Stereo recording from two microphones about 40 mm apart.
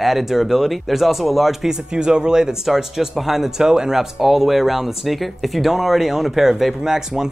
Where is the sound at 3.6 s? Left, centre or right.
Centre.